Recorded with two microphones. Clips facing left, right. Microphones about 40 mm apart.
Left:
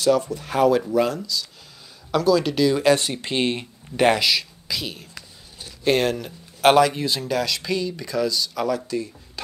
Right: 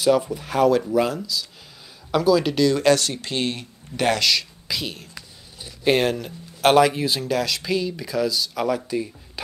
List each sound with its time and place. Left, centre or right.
0.0 s speech: centre
0.5 s speech: centre
2.6 s speech: centre
3.0 s speech: left
4.2 s speech: centre
4.6 s speech: centre
8.6 s speech: centre